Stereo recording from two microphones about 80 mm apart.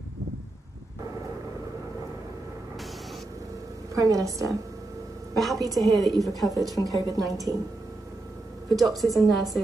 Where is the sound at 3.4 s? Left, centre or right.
Right.